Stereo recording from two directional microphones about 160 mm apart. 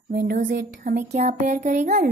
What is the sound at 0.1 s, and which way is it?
Speech, 85° right.